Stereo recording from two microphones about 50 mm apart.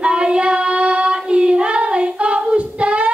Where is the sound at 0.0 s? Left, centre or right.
Right.